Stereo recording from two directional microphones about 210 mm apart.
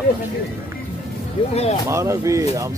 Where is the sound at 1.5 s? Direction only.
30° left (ahead or behind).